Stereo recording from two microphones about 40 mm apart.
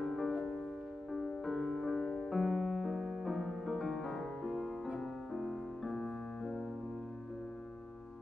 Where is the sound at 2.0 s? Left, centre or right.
Centre.